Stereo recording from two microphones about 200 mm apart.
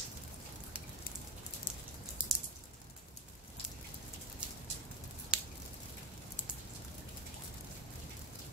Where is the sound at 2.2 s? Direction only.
5° right (ahead or behind).